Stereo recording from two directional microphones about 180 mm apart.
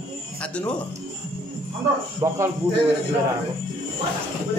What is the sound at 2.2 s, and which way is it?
Speech, 25° right (ahead or behind).